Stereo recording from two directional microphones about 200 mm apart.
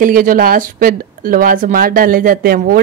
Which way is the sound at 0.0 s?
45° right (ahead or behind).